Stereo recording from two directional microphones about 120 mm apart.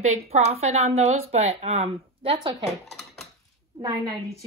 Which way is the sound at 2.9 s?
Centre (ahead or behind).